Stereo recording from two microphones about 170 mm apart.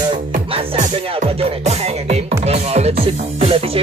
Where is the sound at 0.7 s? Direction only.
40° right (ahead or behind).